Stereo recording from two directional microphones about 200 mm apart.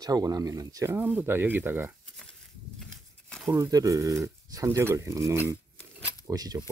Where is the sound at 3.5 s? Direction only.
15° right (ahead or behind).